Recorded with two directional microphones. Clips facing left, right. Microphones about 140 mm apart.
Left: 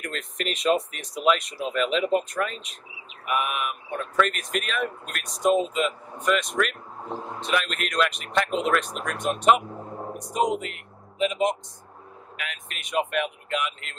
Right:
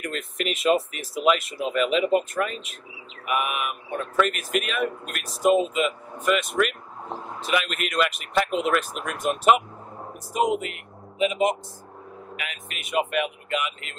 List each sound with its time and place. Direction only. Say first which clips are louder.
0.0 s speech: right 2 dB; 5° right (ahead or behind)